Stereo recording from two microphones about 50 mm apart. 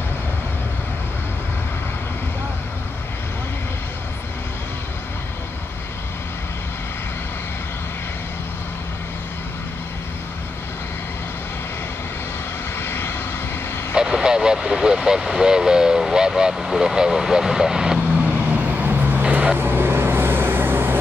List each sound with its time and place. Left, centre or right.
12.7 s vehicle: left
13.9 s speech: centre
18.2 s vehicle: right
19.7 s vehicle: right